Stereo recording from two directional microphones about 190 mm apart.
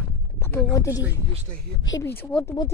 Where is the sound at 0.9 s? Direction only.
10° right (ahead or behind).